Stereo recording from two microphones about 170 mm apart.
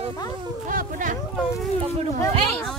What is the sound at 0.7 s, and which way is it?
Speech, 50° right (ahead or behind).